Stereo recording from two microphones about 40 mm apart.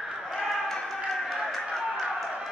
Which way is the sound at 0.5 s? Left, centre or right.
Centre.